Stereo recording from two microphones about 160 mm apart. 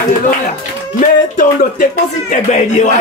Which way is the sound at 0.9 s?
55° left (ahead or behind).